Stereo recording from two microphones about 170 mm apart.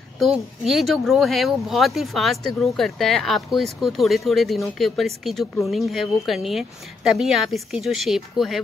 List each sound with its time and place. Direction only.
0.2 s speech: centre (ahead or behind)